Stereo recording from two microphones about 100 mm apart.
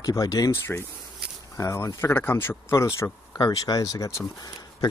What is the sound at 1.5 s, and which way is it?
Speech, 30° left (ahead or behind).